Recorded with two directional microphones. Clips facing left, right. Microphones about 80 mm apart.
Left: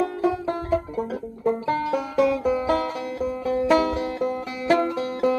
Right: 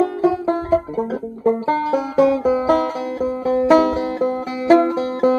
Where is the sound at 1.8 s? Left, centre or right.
Centre.